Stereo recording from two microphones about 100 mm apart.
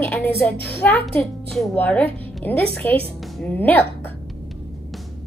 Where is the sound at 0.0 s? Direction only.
15° left (ahead or behind).